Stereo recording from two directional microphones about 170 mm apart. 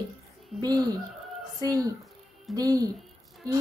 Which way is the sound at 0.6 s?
25° right (ahead or behind).